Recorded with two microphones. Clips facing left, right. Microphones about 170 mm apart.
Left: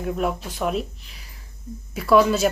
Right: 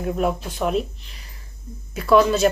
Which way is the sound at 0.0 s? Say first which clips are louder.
Right 2 dB; centre (ahead or behind).